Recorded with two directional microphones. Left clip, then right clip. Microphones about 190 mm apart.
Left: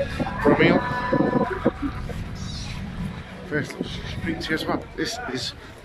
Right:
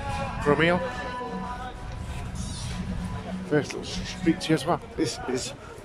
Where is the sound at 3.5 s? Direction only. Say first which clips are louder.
Right 1 dB; 10° right (ahead or behind).